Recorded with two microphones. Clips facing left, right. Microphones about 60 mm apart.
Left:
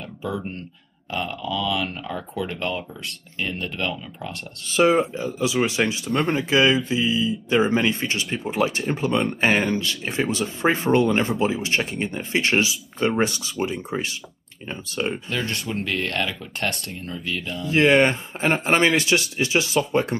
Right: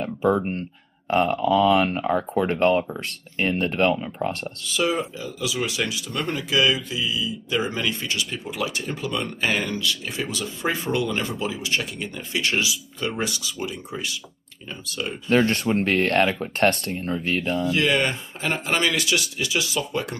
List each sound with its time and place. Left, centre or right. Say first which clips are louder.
0.0 s speech: right 8 dB; right
4.6 s speech: left 6 dB; left
15.2 s speech: right 8 dB; right
17.6 s speech: left 7 dB; left